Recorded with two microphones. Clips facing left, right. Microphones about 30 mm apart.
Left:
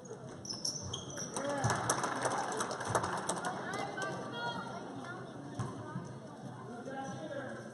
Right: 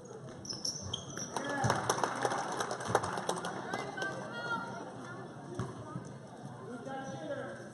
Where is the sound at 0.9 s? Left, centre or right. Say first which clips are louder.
Right 2 dB; right.